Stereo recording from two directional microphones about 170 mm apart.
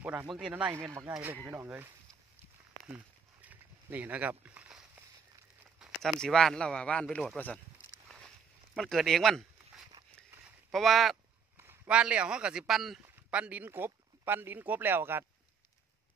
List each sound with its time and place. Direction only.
0.0 s speech: 10° right (ahead or behind)
3.4 s a sound: 10° right (ahead or behind)
5.8 s speech: centre (ahead or behind)
8.7 s speech: centre (ahead or behind)
11.5 s a sound: 15° right (ahead or behind)
11.9 s speech: 5° right (ahead or behind)